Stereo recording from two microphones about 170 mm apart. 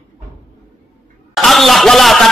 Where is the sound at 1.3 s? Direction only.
Centre (ahead or behind).